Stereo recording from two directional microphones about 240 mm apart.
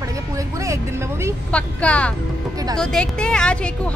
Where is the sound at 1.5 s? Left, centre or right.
Centre.